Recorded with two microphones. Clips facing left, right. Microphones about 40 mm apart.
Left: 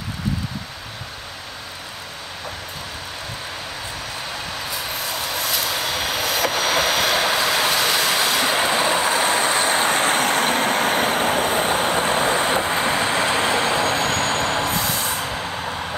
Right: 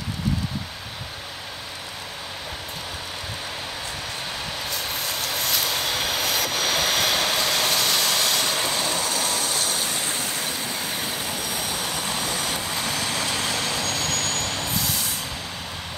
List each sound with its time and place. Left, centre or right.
4.6 s vehicle: centre
8.5 s vehicle: left